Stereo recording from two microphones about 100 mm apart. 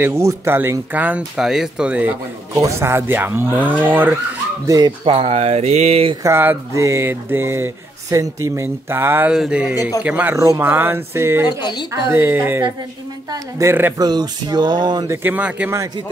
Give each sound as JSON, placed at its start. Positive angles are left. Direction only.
{"t": 0.0, "sound": "speech", "side_deg": -30}
{"t": 2.5, "sound": "speech", "side_deg": -30}
{"t": 4.6, "sound": "speech", "side_deg": -35}
{"t": 5.0, "sound": "speech", "side_deg": -75}
{"t": 6.2, "sound": "speech", "side_deg": -20}
{"t": 9.3, "sound": "speech", "side_deg": -10}
{"t": 10.3, "sound": "speech", "side_deg": -30}
{"t": 11.4, "sound": "a woman's voice", "side_deg": 45}
{"t": 11.9, "sound": "speech", "side_deg": -25}
{"t": 13.9, "sound": "speech", "side_deg": -45}
{"t": 15.0, "sound": "speech", "side_deg": -20}